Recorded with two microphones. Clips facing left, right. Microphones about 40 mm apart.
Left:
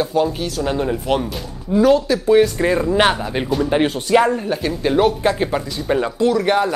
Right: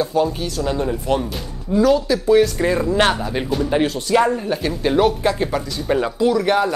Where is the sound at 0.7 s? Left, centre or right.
Centre.